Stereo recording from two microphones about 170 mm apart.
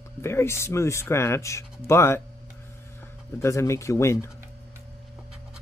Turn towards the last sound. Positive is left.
turn(degrees=15)  # may be behind; listen again after turning